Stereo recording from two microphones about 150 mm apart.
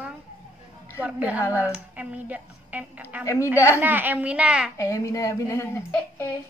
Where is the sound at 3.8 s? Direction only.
15° right (ahead or behind).